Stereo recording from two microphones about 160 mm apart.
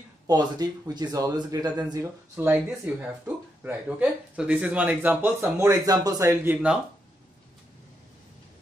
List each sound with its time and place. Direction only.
0.3 s speech: 25° right (ahead or behind)
2.3 s speech: 15° right (ahead or behind)